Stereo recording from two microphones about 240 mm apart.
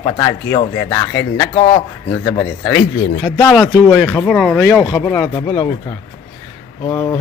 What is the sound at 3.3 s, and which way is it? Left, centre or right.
Speech, centre.